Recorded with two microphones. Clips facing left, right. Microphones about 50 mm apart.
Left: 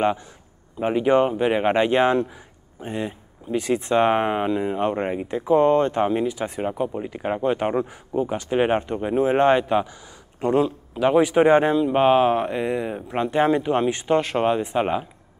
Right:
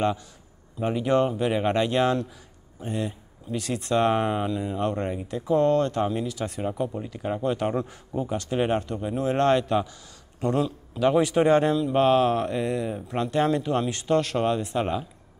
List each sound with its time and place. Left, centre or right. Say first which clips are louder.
0.7 s a man's voice: left 4 dB; left